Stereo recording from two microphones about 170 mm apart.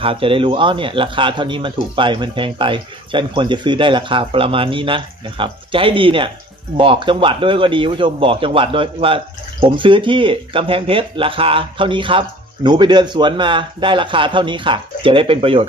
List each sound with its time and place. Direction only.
0.0 s a man's voice: 30° right (ahead or behind)